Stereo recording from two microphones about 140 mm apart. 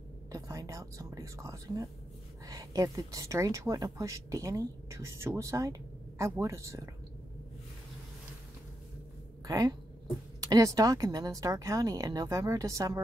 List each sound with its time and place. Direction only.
0.3 s a woman's voice: 25° right (ahead or behind)
9.5 s a woman's voice: 25° right (ahead or behind)